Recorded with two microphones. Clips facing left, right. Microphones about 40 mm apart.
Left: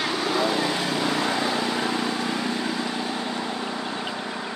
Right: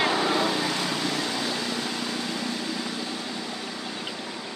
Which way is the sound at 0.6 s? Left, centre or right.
Left.